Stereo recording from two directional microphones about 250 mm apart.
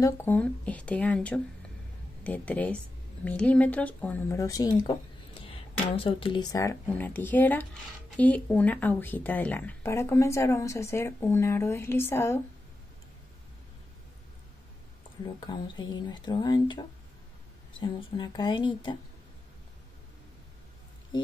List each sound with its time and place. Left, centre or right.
0.0 s speech: centre
15.2 s speech: centre